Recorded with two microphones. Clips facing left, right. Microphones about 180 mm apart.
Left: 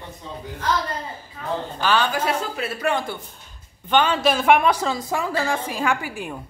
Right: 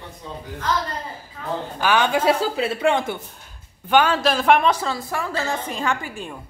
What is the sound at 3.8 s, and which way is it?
A woman's voice, 10° right (ahead or behind).